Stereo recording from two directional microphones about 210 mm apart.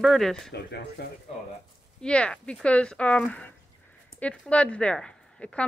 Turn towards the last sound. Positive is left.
turn(degrees=5)  # may be behind; listen again after turning